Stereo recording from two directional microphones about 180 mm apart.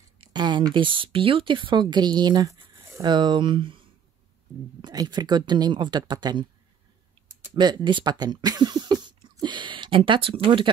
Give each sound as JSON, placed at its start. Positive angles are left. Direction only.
{"t": 0.2, "sound": "speech", "side_deg": -25}
{"t": 4.8, "sound": "speech", "side_deg": -25}
{"t": 7.5, "sound": "speech", "side_deg": -25}